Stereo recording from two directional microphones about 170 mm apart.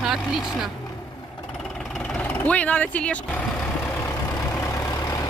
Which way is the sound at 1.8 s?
Centre (ahead or behind).